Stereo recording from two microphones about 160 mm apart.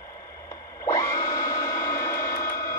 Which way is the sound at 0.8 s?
20° left (ahead or behind).